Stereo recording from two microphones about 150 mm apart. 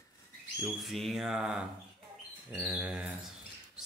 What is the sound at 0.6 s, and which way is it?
Speech, centre (ahead or behind).